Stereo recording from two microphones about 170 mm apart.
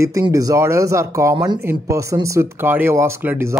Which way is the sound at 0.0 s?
20° right (ahead or behind).